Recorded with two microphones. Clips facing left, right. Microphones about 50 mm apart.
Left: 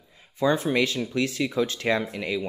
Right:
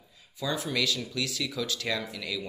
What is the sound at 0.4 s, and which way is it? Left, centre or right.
Speech, left.